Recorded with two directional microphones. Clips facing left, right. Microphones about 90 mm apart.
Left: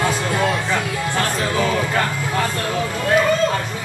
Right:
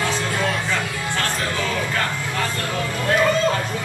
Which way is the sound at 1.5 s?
20° left (ahead or behind).